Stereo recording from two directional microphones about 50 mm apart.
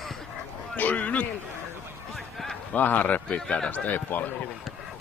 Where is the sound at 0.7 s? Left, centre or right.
Left.